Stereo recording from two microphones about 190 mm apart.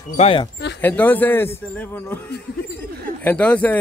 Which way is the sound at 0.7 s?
10° left (ahead or behind).